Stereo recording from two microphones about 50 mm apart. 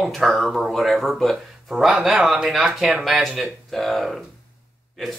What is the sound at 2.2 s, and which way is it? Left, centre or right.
Speech, centre.